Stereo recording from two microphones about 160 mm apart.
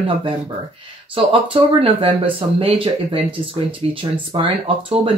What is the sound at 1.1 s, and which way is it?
Speech, 35° right (ahead or behind).